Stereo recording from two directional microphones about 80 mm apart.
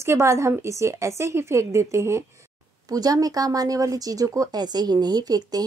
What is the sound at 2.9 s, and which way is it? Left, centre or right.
Speech, right.